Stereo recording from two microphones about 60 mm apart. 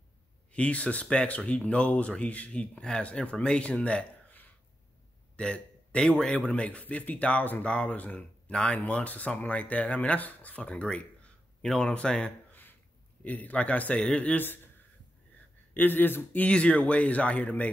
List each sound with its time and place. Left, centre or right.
0.5 s speech: left
5.3 s a sound: centre
6.1 s speech: centre
14.3 s a man's voice: left
15.7 s a man's voice: left
16.4 s speech: centre